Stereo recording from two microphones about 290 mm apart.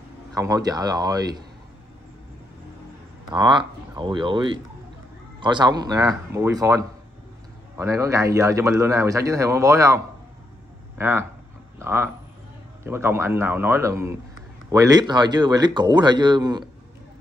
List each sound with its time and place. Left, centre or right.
0.3 s speech: centre
3.3 s speech: centre